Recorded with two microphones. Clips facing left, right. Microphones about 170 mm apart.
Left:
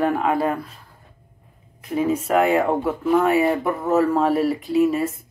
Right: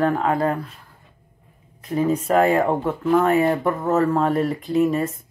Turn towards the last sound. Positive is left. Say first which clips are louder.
# left 1 dB
turn(degrees=5)  # may be behind; listen again after turning